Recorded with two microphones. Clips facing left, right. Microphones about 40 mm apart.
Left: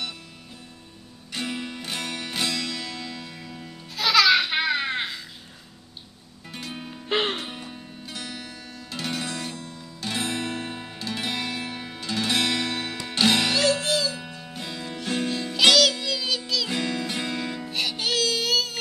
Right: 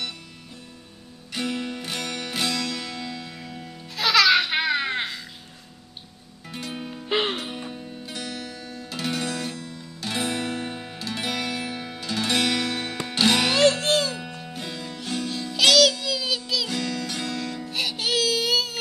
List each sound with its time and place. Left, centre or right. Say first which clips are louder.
1.3 s music: right 3 dB; centre
6.5 s music: right 3 dB; centre
13.5 s music: right 3 dB; right
14.5 s music: left 2 dB; centre
15.7 s a sound: right 1 dB; centre
16.6 s music: left 1 dB; left
17.6 s music: right 1 dB; centre